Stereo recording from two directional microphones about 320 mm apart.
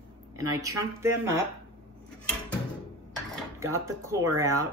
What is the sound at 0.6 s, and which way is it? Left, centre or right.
Speech, centre.